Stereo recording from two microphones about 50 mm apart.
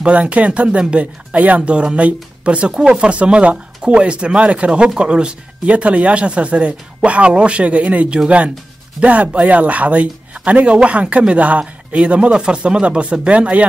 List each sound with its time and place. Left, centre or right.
0.0 s speech: right